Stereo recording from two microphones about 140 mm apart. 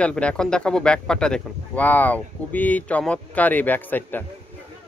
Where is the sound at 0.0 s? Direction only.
10° left (ahead or behind).